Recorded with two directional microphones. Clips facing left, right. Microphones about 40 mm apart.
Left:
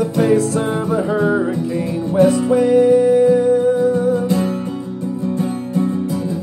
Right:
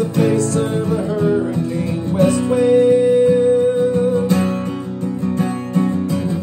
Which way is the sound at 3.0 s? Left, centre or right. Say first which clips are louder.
Left 1 dB; right.